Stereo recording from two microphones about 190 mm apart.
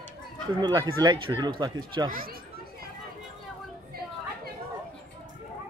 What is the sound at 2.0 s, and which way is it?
Speech, 50° right (ahead or behind).